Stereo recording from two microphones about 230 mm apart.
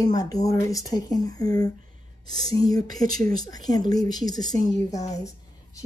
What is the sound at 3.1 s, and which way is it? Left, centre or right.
Speech, right.